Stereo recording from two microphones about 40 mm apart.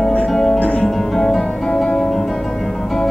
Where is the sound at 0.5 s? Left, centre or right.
Left.